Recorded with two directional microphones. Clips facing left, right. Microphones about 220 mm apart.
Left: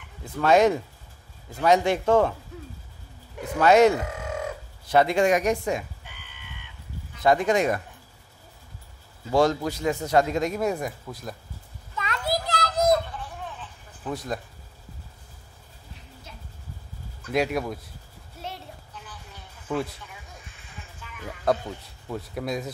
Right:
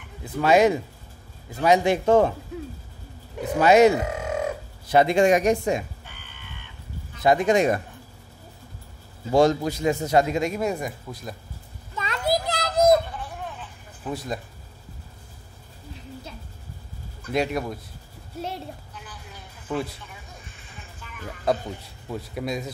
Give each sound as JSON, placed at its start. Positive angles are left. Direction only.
{"t": 0.2, "sound": "a man's voice", "side_deg": -10}
{"t": 3.5, "sound": "speech", "side_deg": -10}
{"t": 7.2, "sound": "speech", "side_deg": -20}
{"t": 9.3, "sound": "speech", "side_deg": -20}
{"t": 10.0, "sound": "speech", "side_deg": -10}
{"t": 12.0, "sound": "children playing", "side_deg": -25}
{"t": 13.6, "sound": "a sound", "side_deg": -5}
{"t": 17.3, "sound": "speech", "side_deg": 0}
{"t": 19.7, "sound": "speech", "side_deg": 0}
{"t": 21.2, "sound": "speech", "side_deg": 0}